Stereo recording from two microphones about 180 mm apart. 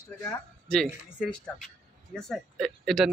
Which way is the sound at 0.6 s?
5° left (ahead or behind).